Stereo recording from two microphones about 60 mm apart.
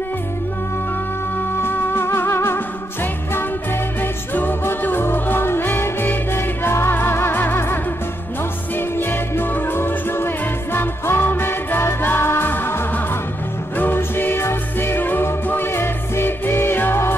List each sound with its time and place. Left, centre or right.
1.6 s music: left